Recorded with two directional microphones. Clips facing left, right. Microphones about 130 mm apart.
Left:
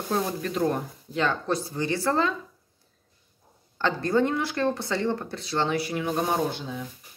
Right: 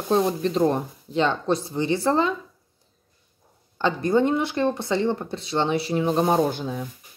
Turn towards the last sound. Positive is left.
turn(degrees=-45)  # may be behind; listen again after turning